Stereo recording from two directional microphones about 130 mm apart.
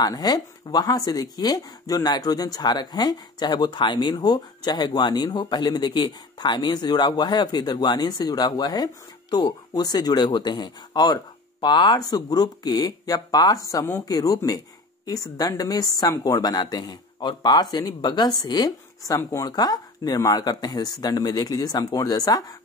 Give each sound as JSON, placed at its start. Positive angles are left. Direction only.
{"t": 0.0, "sound": "speech", "side_deg": 30}